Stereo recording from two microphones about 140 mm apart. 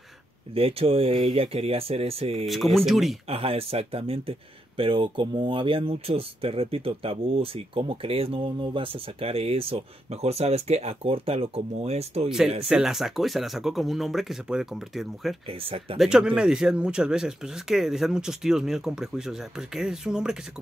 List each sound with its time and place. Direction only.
0.6 s speech: 45° right (ahead or behind)
2.4 s speech: centre (ahead or behind)
3.3 s speech: 45° right (ahead or behind)
12.6 s speech: 5° right (ahead or behind)
15.4 s speech: 40° right (ahead or behind)
16.0 s speech: 5° right (ahead or behind)